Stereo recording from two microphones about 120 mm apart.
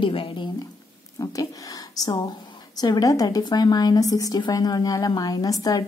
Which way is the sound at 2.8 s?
30° left (ahead or behind).